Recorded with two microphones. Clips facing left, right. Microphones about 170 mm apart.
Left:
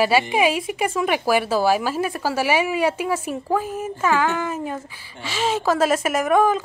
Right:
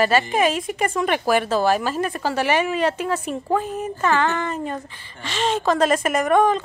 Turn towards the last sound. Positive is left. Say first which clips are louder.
# even
turn(degrees=5)  # may be behind; listen again after turning